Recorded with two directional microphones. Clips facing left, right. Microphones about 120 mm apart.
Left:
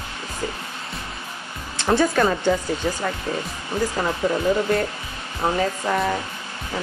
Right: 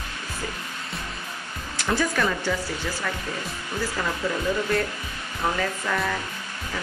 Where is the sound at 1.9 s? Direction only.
30° left (ahead or behind).